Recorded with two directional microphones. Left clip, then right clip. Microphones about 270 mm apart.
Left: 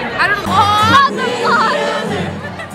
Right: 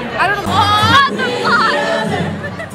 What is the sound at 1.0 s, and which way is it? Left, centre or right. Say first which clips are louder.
Music: left 1 dB; left.